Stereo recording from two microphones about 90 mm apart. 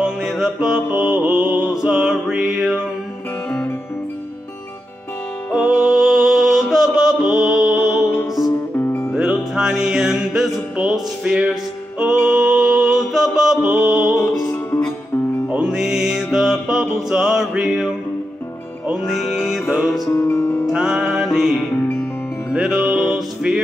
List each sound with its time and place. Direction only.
0.0 s music: 10° right (ahead or behind)
3.4 s music: 20° left (ahead or behind)
5.5 s music: 10° right (ahead or behind)
8.7 s music: 25° left (ahead or behind)
9.1 s music: 10° right (ahead or behind)
12.0 s mantra: 10° right (ahead or behind)
15.4 s music: 10° right (ahead or behind)
20.1 s music: 30° left (ahead or behind)
20.6 s music: 10° right (ahead or behind)
21.7 s music: 20° left (ahead or behind)
22.5 s music: 10° right (ahead or behind)